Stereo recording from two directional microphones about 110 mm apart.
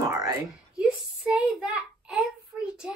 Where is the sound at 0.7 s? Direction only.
5° right (ahead or behind).